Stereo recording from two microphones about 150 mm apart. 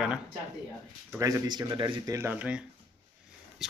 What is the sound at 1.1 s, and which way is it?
Speech, 20° right (ahead or behind).